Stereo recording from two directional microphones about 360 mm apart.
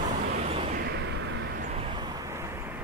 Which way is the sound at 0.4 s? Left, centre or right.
Centre.